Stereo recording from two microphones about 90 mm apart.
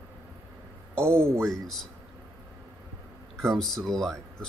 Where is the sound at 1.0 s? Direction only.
25° right (ahead or behind).